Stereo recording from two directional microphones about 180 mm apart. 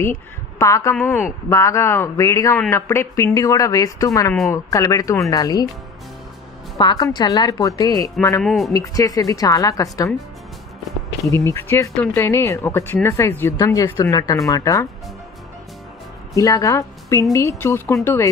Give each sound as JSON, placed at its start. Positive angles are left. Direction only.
{"t": 0.0, "sound": "speech", "side_deg": 15}
{"t": 6.8, "sound": "speech", "side_deg": 25}
{"t": 8.4, "sound": "speech", "side_deg": 0}
{"t": 8.7, "sound": "speech", "side_deg": 20}
{"t": 11.2, "sound": "speech", "side_deg": 15}
{"t": 16.3, "sound": "a woman's voice", "side_deg": 20}